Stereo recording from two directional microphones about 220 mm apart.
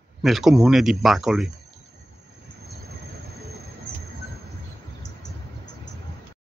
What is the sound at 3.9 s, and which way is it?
Train, 45° right (ahead or behind).